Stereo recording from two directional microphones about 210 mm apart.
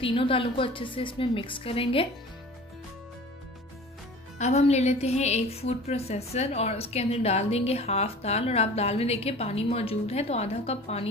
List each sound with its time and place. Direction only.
0.0 s a woman's voice: 25° left (ahead or behind)
4.4 s a woman's voice: 30° left (ahead or behind)